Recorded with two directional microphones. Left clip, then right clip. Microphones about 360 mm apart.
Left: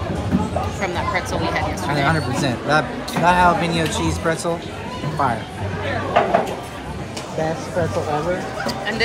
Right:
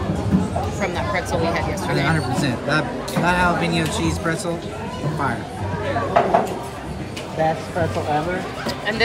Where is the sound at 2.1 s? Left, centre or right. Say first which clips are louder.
Left 1 dB; centre.